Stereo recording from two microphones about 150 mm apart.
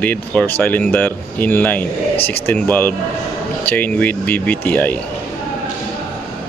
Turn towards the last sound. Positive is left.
turn(degrees=10)  # may be behind; listen again after turning